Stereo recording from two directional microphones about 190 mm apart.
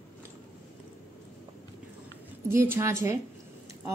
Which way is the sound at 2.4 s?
10° right (ahead or behind).